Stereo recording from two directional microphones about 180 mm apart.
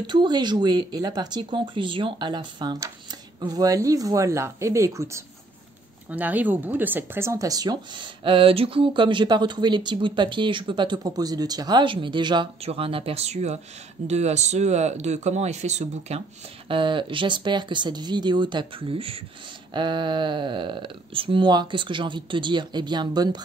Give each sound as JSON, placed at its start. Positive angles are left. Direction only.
{"t": 0.0, "sound": "speech", "side_deg": -25}
{"t": 16.6, "sound": "speech", "side_deg": -30}